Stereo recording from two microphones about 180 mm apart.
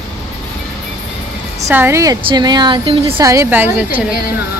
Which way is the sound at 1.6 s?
15° right (ahead or behind).